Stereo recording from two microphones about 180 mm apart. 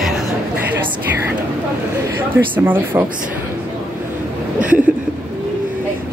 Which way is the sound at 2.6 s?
10° right (ahead or behind).